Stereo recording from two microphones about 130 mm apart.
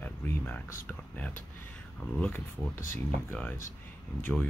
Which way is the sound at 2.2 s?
15° left (ahead or behind).